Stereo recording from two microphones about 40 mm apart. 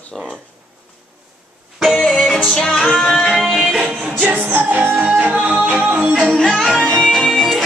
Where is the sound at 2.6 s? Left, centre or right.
Centre.